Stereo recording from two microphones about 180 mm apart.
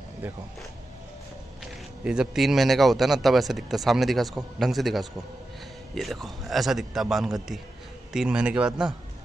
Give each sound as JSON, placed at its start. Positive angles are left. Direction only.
{"t": 2.0, "sound": "speech", "side_deg": -5}